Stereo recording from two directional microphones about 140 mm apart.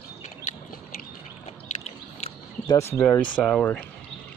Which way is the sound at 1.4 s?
55° left (ahead or behind).